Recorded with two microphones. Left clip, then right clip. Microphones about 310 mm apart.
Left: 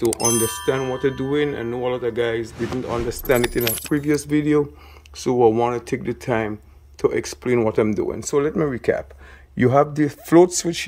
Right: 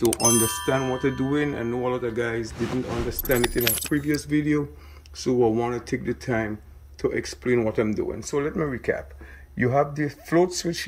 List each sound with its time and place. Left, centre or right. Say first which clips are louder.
0.2 s speech: left 1 dB; centre
3.9 s speech: left 7 dB; centre